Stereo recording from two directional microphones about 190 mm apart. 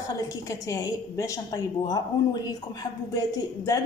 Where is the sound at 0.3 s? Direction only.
20° left (ahead or behind).